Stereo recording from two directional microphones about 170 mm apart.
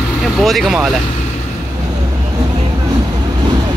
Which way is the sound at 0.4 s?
Centre (ahead or behind).